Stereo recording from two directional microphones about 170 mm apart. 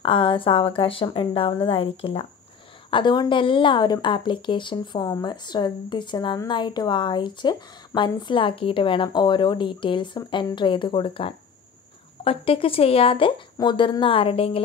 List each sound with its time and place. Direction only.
0.0 s a woman's voice: 30° left (ahead or behind)